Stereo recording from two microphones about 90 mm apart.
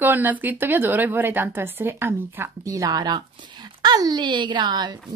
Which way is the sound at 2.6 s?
40° right (ahead or behind).